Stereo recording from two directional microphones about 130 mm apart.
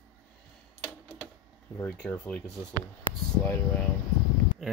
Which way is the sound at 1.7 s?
10° left (ahead or behind).